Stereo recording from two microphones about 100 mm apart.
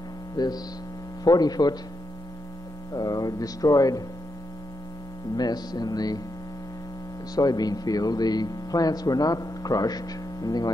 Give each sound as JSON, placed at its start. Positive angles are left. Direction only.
{"t": 0.4, "sound": "speech", "side_deg": 40}
{"t": 2.9, "sound": "speech", "side_deg": 40}
{"t": 5.3, "sound": "speech", "side_deg": 40}
{"t": 7.3, "sound": "speech", "side_deg": 40}